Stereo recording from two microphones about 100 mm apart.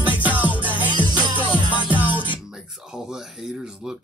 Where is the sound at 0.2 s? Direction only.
15° right (ahead or behind).